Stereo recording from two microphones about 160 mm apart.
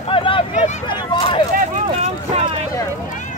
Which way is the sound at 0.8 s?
30° left (ahead or behind).